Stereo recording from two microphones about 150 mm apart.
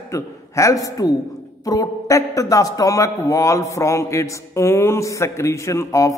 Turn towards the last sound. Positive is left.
turn(degrees=20)  # may be behind; listen again after turning